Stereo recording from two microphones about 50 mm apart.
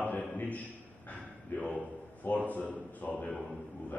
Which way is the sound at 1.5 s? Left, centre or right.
Left.